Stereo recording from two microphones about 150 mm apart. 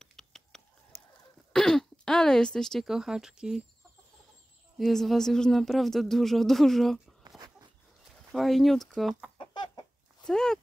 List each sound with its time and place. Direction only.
0.0 s chicken: 5° left (ahead or behind)
1.5 s speech: 5° left (ahead or behind)
4.7 s speech: centre (ahead or behind)
7.2 s a sound: 25° right (ahead or behind)
8.3 s speech: centre (ahead or behind)
9.4 s chicken: 30° left (ahead or behind)
10.2 s speech: 5° left (ahead or behind)